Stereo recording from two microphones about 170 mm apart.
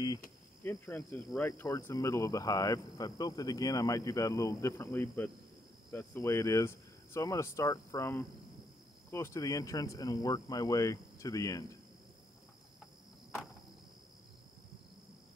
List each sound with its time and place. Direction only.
0.7 s speech: 10° left (ahead or behind)